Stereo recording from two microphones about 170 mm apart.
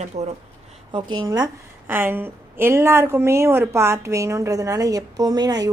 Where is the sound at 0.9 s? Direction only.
25° right (ahead or behind).